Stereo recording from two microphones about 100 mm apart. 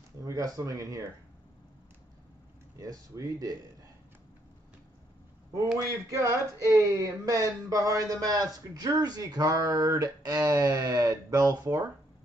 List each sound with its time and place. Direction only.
0.2 s speech: 35° right (ahead or behind)
2.8 s speech: 35° right (ahead or behind)
5.9 s speech: 30° right (ahead or behind)